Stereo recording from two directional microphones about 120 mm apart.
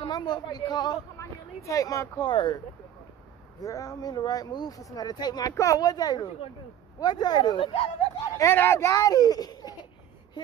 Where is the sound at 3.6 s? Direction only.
30° left (ahead or behind); by 7.9 s 45° left (ahead or behind).